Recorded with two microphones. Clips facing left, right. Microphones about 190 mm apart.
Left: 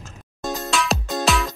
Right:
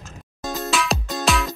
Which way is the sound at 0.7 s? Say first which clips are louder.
Even; centre (ahead or behind).